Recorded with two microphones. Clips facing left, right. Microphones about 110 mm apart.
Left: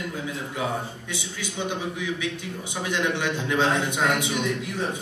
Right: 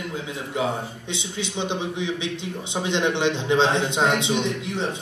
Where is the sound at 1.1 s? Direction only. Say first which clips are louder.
Right 4 dB; 20° right (ahead or behind).